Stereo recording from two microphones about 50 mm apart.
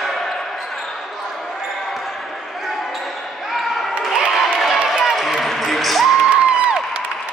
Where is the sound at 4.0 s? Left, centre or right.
Centre.